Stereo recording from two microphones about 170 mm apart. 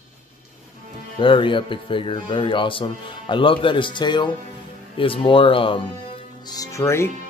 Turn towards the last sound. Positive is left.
turn(degrees=15)  # may be behind; listen again after turning